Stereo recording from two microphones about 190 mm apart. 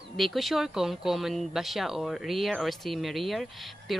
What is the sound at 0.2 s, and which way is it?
A woman's voice, centre (ahead or behind).